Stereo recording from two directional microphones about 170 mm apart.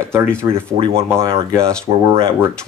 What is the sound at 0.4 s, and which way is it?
Speech, 15° right (ahead or behind).